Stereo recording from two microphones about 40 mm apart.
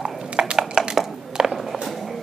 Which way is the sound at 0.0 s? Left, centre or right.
Right.